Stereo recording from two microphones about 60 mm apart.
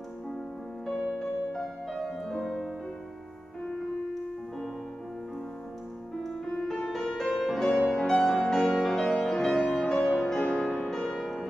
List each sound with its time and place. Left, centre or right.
1.5 s music: centre
6.2 s music: centre
11.1 s music: centre